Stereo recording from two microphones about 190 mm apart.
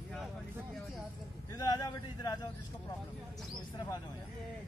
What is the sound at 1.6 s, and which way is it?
Speech, 20° left (ahead or behind).